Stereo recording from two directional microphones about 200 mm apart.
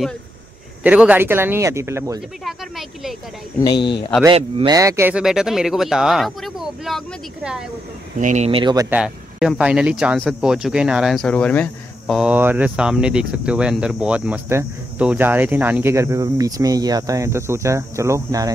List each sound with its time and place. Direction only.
0.8 s speech: 5° right (ahead or behind)
2.4 s speech: centre (ahead or behind)
4.4 s speech: 25° right (ahead or behind)
4.7 s speech: 15° right (ahead or behind)
8.2 s speech: 40° right (ahead or behind)
8.5 s speech: 25° right (ahead or behind)
8.9 s speech: 5° right (ahead or behind)
12.2 s speech: 10° right (ahead or behind)